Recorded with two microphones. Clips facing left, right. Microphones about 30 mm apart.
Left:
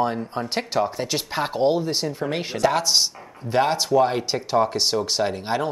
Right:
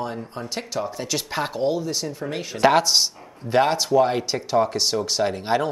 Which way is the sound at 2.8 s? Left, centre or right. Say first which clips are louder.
Even; centre.